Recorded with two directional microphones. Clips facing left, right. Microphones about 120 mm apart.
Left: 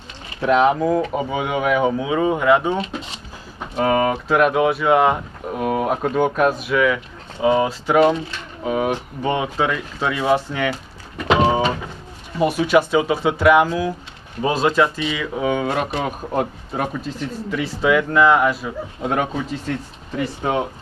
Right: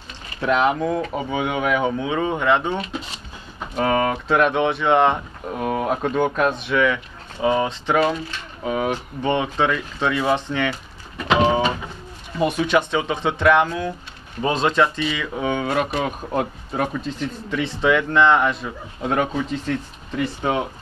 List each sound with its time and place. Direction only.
0.4 s speech: 5° left (ahead or behind)
12.4 s speech: 10° left (ahead or behind)